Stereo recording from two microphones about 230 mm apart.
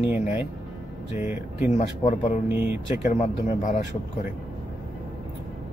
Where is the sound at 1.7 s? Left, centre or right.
Left.